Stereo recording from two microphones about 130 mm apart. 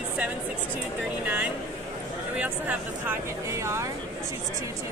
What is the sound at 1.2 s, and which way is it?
Speech, 15° right (ahead or behind).